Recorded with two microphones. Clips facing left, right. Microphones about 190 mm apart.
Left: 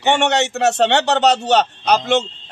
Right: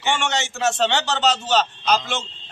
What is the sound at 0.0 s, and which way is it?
A man's voice, 65° left (ahead or behind).